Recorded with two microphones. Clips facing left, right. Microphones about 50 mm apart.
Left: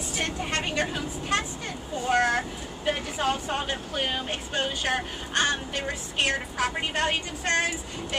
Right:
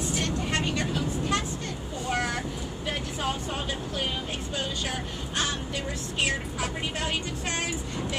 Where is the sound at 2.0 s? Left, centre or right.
Left.